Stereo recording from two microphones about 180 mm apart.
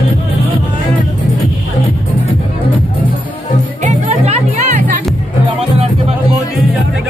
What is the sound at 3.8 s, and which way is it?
Music, 40° right (ahead or behind).